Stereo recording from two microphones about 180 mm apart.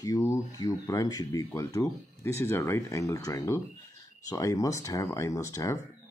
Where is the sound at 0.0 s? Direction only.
20° left (ahead or behind).